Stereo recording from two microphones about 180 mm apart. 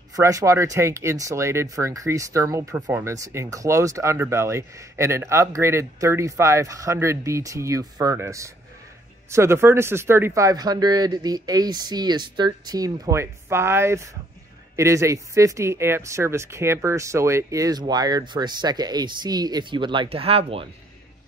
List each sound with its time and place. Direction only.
0.1 s speech: 20° right (ahead or behind)